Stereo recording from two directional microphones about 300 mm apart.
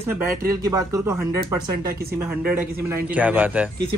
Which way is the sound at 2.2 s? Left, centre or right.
Centre.